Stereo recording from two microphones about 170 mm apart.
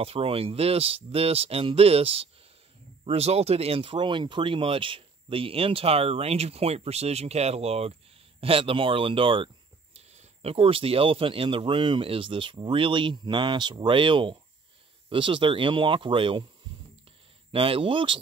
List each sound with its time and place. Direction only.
0.0 s speech: 35° right (ahead or behind)
17.5 s speech: 30° right (ahead or behind)